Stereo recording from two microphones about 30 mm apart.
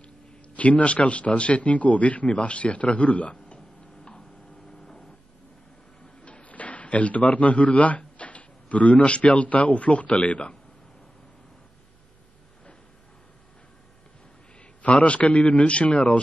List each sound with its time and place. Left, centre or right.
0.6 s a man's voice: left
2.2 s a man's voice: left
4.1 s a sound: left
6.2 s sliding door: left
6.5 s speech: left
8.0 s drawer open or close: left
9.1 s a man's voice: left
14.8 s a man's voice: left